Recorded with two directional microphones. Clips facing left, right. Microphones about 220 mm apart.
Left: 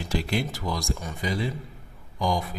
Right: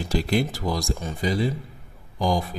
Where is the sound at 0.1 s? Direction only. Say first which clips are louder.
Right 4 dB; 40° right (ahead or behind).